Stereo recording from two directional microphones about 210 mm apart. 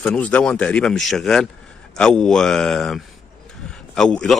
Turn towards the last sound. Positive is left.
turn(degrees=5)  # may be behind; listen again after turning